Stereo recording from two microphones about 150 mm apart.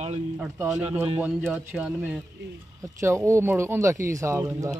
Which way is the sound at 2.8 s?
20° right (ahead or behind).